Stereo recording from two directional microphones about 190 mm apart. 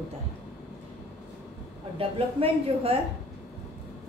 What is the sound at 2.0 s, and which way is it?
A woman's voice, 30° right (ahead or behind).